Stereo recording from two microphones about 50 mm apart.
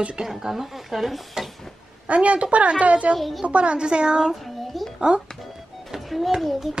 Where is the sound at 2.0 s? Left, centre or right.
Right.